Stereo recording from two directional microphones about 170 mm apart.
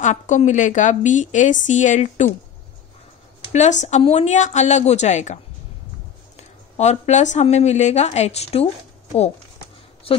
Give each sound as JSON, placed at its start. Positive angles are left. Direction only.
{"t": 0.0, "sound": "a woman's voice", "side_deg": 45}
{"t": 3.5, "sound": "a woman's voice", "side_deg": 45}
{"t": 6.8, "sound": "a woman's voice", "side_deg": 45}
{"t": 10.1, "sound": "speech", "side_deg": 35}